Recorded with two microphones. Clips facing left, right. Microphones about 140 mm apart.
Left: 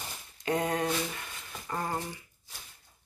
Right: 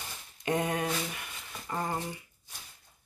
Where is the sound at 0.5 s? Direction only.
20° right (ahead or behind).